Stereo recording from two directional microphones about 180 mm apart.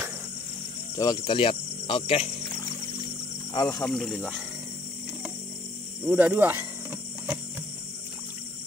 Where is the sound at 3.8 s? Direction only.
5° left (ahead or behind).